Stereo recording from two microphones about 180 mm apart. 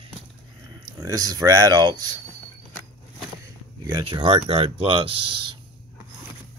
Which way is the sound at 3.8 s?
25° right (ahead or behind).